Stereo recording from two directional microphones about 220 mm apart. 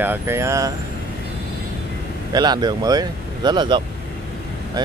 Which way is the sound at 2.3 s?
20° right (ahead or behind).